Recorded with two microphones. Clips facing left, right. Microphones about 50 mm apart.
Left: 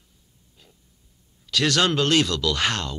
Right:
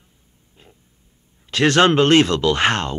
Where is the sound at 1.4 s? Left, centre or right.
Right.